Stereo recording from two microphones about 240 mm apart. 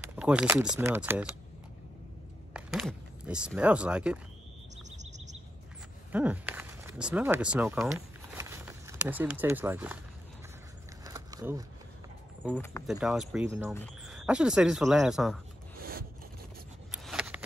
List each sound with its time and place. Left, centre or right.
0.1 s speech: centre
2.5 s speech: centre
6.1 s speech: centre
8.4 s a sound: centre
11.1 s a sound: centre
12.4 s speech: centre
13.7 s speech: centre
15.8 s scrape: right
16.9 s a sound: centre